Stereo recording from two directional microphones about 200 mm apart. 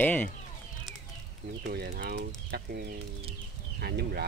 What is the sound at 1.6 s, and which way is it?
Speech, 50° right (ahead or behind).